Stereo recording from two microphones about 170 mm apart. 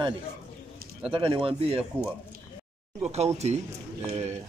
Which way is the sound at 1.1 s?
30° right (ahead or behind).